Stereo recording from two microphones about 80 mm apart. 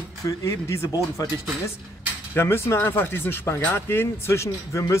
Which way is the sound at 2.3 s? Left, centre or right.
Left.